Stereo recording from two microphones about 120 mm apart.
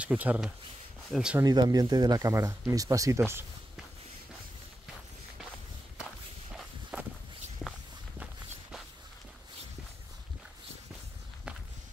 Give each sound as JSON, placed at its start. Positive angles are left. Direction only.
{"t": 0.0, "sound": "speech", "side_deg": -10}
{"t": 1.4, "sound": "speech", "side_deg": -35}
{"t": 6.5, "sound": "walk", "side_deg": -5}
{"t": 7.6, "sound": "walk", "side_deg": 5}